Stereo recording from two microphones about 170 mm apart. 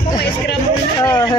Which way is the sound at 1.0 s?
25° left (ahead or behind).